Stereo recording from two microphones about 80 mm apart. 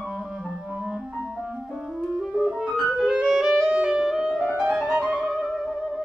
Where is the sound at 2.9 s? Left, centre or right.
Centre.